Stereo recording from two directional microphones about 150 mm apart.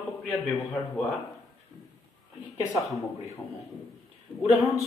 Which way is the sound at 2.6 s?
20° left (ahead or behind).